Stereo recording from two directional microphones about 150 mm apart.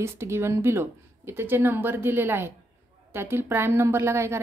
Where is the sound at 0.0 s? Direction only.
20° right (ahead or behind).